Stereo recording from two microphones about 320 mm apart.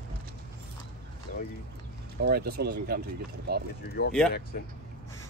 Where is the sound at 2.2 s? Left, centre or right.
Right.